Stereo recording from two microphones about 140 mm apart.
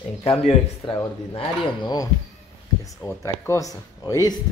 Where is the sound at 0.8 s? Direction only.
30° left (ahead or behind).